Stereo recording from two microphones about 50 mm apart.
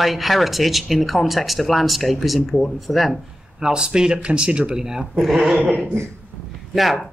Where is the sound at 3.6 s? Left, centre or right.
Centre.